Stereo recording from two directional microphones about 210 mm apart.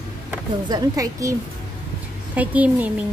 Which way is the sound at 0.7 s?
15° right (ahead or behind).